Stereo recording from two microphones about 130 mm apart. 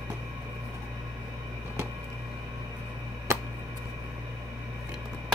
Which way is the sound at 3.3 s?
20° right (ahead or behind).